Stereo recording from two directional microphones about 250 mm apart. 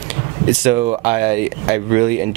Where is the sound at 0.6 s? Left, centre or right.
Centre.